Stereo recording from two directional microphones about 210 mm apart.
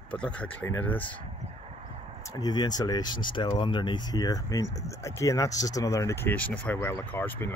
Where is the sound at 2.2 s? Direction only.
20° left (ahead or behind).